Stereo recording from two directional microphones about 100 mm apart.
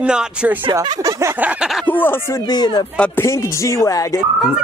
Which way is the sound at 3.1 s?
30° left (ahead or behind).